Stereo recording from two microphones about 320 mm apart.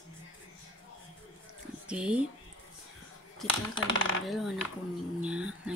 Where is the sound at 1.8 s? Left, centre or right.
Centre.